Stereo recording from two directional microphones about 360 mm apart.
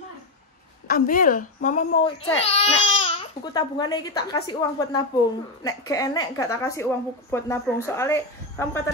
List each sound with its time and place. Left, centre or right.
0.8 s a woman's voice: left; by 8.8 s centre